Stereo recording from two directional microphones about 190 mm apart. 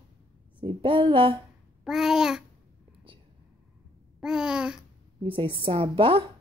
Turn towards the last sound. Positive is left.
turn(degrees=-30)  # may be behind; listen again after turning